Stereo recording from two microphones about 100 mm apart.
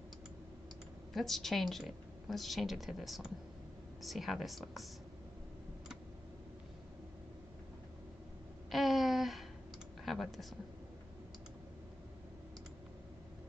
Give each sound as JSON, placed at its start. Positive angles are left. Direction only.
{"t": 1.1, "sound": "a woman's voice", "side_deg": 0}
{"t": 8.7, "sound": "a sound", "side_deg": 0}
{"t": 10.0, "sound": "speech", "side_deg": 0}